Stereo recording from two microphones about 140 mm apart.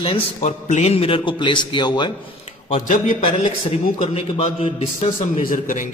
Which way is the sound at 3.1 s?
40° left (ahead or behind).